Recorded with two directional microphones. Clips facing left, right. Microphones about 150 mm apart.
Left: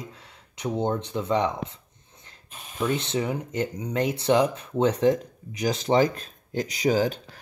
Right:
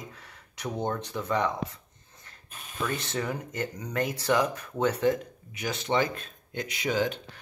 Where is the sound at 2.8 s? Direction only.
20° left (ahead or behind).